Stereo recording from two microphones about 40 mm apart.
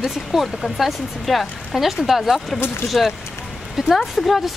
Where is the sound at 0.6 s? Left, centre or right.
Centre.